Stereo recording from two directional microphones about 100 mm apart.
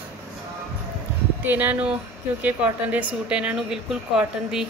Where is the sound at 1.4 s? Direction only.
15° right (ahead or behind).